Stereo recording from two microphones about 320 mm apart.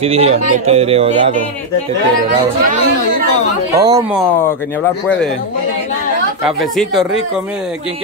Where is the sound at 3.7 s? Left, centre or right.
Centre.